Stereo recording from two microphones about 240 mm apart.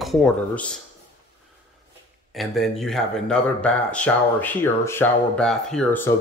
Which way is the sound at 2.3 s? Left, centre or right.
Centre.